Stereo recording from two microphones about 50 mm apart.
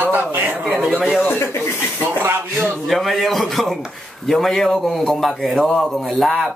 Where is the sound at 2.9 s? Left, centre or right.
Centre.